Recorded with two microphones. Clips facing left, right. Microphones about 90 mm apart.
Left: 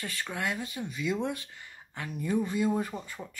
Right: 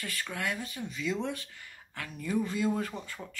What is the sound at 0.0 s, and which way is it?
Speech, 25° left (ahead or behind).